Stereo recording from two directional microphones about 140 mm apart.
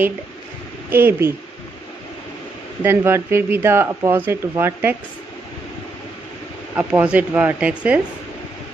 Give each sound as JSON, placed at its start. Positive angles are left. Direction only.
{"t": 0.8, "sound": "speech", "side_deg": -15}
{"t": 2.8, "sound": "speech", "side_deg": -15}
{"t": 6.7, "sound": "speech", "side_deg": -10}